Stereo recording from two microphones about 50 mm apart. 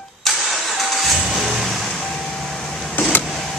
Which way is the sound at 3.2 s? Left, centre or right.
Centre.